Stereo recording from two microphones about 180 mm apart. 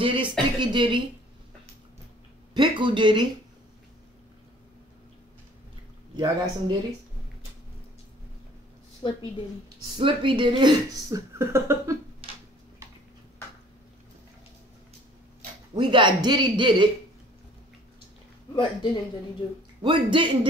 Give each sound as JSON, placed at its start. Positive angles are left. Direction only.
{"t": 0.0, "sound": "speech", "side_deg": -30}
{"t": 2.5, "sound": "speech", "side_deg": -25}
{"t": 6.1, "sound": "speech", "side_deg": -25}
{"t": 9.9, "sound": "speech", "side_deg": -30}
{"t": 15.7, "sound": "speech", "side_deg": -25}
{"t": 18.5, "sound": "speech", "side_deg": 25}
{"t": 19.8, "sound": "speech", "side_deg": -25}